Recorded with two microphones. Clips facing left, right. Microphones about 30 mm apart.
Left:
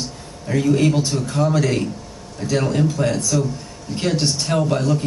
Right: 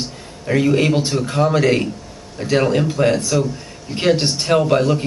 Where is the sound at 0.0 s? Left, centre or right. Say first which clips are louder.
Right 2 dB; right.